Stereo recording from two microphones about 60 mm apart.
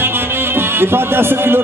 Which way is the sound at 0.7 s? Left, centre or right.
Right.